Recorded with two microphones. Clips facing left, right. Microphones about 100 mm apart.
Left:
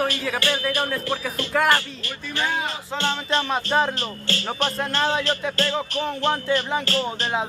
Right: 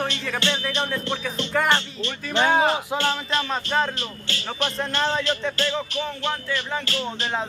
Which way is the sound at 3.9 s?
35° left (ahead or behind).